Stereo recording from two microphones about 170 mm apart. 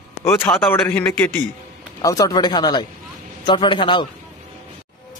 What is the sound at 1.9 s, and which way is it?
Speech, 20° left (ahead or behind).